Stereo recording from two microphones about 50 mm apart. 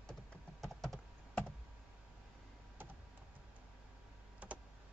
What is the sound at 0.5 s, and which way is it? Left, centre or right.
Computer keyboard, centre.